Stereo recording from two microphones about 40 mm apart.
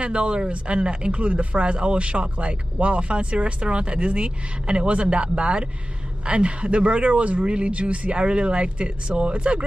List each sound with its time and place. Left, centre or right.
0.0 s speech: right